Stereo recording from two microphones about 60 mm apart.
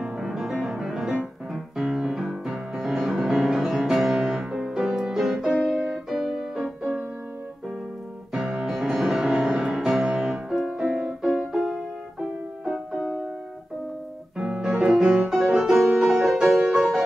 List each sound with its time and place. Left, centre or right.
0.0 s music: centre
8.5 s music: centre
11.2 s music: centre
14.4 s music: centre